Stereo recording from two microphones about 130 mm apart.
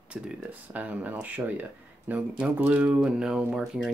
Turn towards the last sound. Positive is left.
turn(degrees=-5)  # may be behind; listen again after turning